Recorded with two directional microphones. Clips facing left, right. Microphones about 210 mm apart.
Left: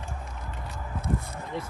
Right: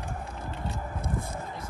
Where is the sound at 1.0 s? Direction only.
50° right (ahead or behind).